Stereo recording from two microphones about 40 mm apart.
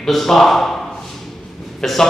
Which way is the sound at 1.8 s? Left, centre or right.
Centre.